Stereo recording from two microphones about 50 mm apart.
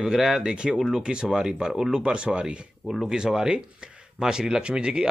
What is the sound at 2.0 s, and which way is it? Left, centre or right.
Speech, right.